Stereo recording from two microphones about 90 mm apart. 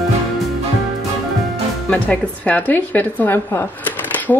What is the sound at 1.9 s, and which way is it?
A woman's voice, 15° left (ahead or behind).